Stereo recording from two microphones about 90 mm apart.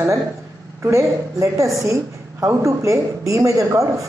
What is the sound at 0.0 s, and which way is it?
A woman's voice, 35° right (ahead or behind).